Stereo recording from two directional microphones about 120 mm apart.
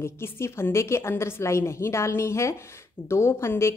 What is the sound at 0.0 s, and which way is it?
A woman's voice, 20° left (ahead or behind).